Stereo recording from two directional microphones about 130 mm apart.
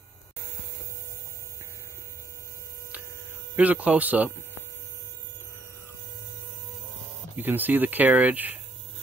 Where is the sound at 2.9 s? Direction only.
10° right (ahead or behind).